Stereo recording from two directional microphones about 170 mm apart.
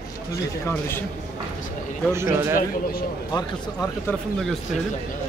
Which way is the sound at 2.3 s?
15° right (ahead or behind).